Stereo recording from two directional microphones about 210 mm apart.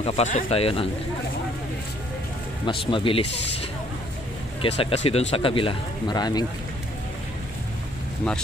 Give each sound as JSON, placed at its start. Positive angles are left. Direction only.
{"t": 0.0, "sound": "speech", "side_deg": 30}
{"t": 2.6, "sound": "speech", "side_deg": 25}
{"t": 4.6, "sound": "speech", "side_deg": 25}